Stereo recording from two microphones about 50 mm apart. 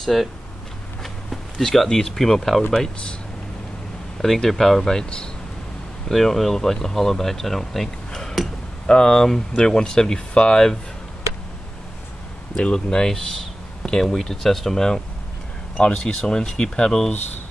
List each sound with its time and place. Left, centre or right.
0.0 s speech: centre
4.2 s speech: centre
6.0 s speech: centre
12.5 s speech: centre